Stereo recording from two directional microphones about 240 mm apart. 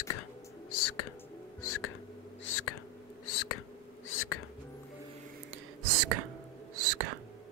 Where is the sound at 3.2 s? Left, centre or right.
Left.